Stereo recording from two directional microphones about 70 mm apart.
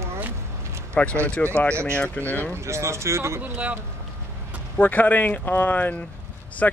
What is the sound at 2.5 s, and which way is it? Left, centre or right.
Speech, right.